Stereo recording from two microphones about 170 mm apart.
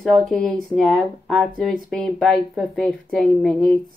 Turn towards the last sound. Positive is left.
turn(degrees=0)  # may be behind; listen again after turning